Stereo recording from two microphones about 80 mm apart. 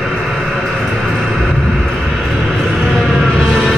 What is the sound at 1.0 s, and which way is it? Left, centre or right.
Music, centre.